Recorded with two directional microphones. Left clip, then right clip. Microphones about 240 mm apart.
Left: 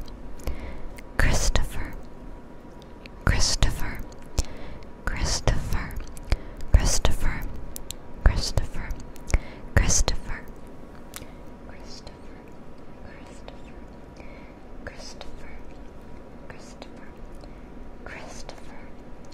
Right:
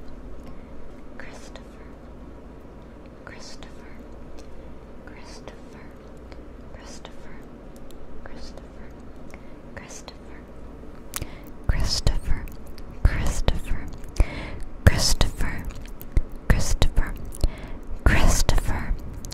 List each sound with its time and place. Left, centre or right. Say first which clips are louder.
1.1 s whispering: left 16 dB; left
3.3 s whispering: left 17 dB; left
5.0 s whispering: left 15 dB; left
9.3 s whispering: left 14 dB; left
11.7 s whispering: right 18 dB; right
14.8 s whispering: right 17 dB; right
16.4 s whispering: right 17 dB; right
18.0 s whispering: right 16 dB; right